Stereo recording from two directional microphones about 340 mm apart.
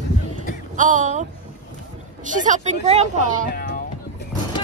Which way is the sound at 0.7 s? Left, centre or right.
Right.